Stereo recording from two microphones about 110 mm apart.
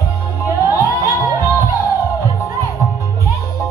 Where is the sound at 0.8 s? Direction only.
30° left (ahead or behind).